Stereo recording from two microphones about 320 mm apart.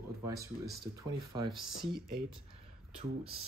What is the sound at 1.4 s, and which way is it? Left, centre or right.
Speech, centre.